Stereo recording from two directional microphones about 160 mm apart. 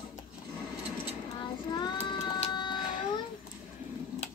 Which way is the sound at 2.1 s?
30° left (ahead or behind).